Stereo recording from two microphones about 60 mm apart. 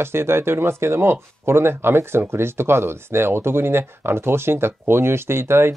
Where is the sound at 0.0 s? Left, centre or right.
Right.